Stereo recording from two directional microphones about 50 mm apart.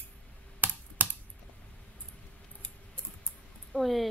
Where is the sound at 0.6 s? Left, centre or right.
Right.